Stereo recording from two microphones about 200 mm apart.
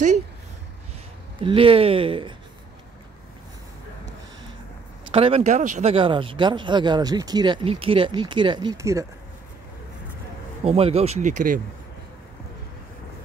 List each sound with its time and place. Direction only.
1.4 s speech: 25° right (ahead or behind)
5.1 s speech: 30° right (ahead or behind)
10.6 s speech: 30° right (ahead or behind)